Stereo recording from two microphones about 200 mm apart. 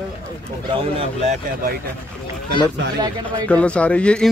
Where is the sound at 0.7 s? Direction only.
30° right (ahead or behind).